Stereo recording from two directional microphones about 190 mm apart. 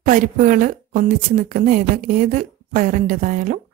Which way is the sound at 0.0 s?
45° right (ahead or behind).